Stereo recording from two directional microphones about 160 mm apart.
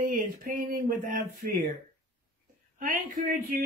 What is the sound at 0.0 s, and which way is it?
A man's voice, 55° right (ahead or behind).